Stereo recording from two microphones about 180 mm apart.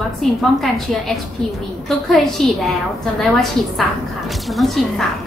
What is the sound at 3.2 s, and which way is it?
A woman's voice, centre (ahead or behind).